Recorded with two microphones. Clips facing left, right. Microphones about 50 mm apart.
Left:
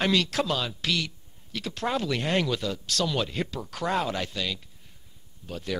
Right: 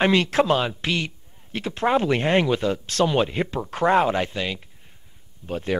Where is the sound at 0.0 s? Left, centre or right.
Right.